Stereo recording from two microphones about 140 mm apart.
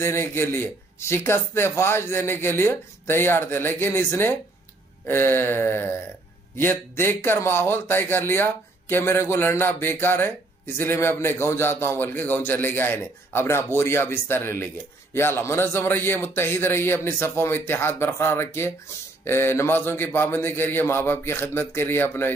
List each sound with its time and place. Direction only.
0.0 s a man's voice: 15° left (ahead or behind)